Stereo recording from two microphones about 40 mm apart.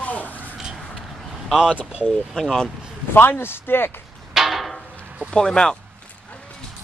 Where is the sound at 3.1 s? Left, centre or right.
Left.